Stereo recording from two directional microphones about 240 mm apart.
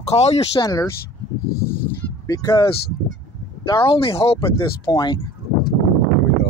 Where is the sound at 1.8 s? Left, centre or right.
Centre.